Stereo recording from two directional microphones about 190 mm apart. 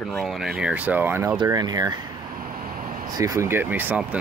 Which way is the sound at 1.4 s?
20° right (ahead or behind).